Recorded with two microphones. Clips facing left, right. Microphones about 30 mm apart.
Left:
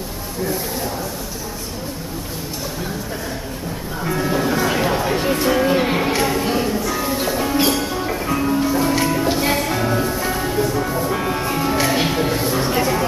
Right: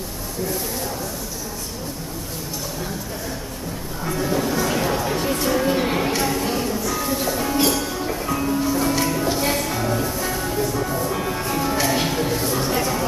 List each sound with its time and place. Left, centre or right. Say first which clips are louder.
4.0 s music: left 3 dB; left